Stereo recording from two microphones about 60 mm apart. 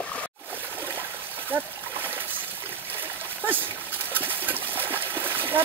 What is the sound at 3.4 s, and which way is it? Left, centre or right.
Dog, right.